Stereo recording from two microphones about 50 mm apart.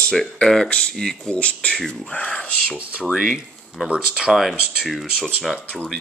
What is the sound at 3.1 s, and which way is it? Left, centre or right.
Speech, centre.